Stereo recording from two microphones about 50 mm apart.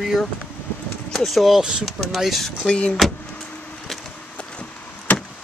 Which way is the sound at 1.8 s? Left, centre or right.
Centre.